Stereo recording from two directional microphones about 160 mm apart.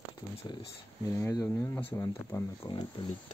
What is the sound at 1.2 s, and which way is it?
Speech, 20° left (ahead or behind).